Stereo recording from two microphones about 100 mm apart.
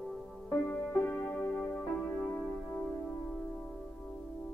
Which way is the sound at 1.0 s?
20° left (ahead or behind).